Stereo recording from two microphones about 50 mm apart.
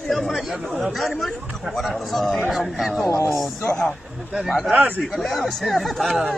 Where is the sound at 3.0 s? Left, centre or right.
Left.